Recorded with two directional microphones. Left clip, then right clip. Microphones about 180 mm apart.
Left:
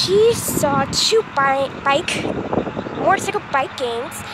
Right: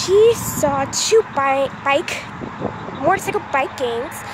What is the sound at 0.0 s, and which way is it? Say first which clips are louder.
Speech: right 2 dB; 10° right (ahead or behind).